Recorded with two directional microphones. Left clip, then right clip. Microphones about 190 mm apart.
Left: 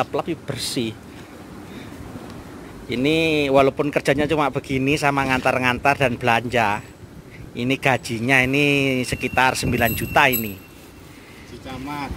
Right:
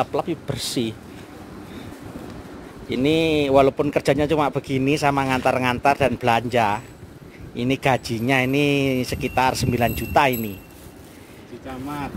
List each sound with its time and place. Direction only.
0.0 s speech: 5° right (ahead or behind)
2.9 s speech: 10° right (ahead or behind)